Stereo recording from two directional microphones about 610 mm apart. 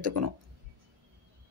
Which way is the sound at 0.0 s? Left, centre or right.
Right.